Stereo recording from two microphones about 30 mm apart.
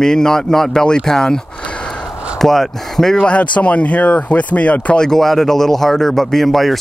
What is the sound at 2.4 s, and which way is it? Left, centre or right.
Speech, centre.